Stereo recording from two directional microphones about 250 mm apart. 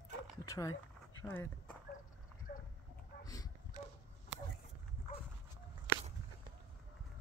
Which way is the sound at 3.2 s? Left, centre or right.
Centre.